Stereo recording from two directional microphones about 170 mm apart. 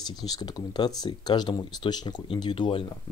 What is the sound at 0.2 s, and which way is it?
Speech, 20° left (ahead or behind).